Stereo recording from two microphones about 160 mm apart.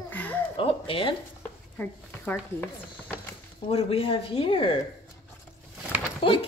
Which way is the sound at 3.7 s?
35° left (ahead or behind).